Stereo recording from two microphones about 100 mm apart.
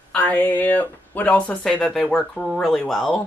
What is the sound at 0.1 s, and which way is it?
Speech, 15° left (ahead or behind).